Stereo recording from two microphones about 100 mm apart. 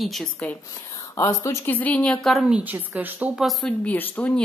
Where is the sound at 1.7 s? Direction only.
15° left (ahead or behind).